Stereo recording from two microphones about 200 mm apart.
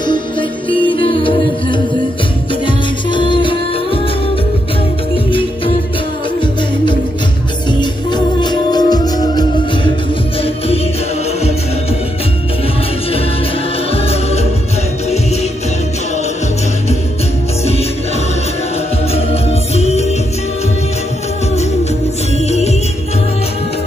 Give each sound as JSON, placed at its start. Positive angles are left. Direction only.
{"t": 0.0, "sound": "music", "side_deg": 25}
{"t": 7.8, "sound": "music", "side_deg": 20}
{"t": 19.7, "sound": "music", "side_deg": 30}
{"t": 22.5, "sound": "music", "side_deg": 35}